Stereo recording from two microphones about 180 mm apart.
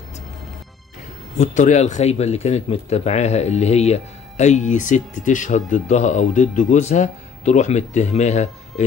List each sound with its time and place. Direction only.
1.4 s speech: 45° left (ahead or behind)